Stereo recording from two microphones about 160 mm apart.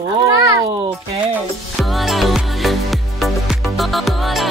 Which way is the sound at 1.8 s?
Centre (ahead or behind).